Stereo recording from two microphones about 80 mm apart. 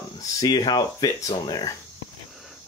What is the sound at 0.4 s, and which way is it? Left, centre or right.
Speech, left.